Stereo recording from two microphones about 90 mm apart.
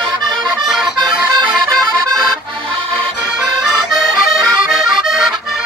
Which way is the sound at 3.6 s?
Centre (ahead or behind).